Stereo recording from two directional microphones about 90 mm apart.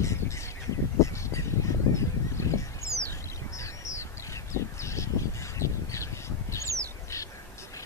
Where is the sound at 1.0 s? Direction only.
35° left (ahead or behind).